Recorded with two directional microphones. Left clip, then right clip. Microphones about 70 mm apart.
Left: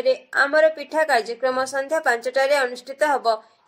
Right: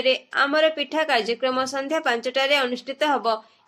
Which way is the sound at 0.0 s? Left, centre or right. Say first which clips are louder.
Left 1 dB; left.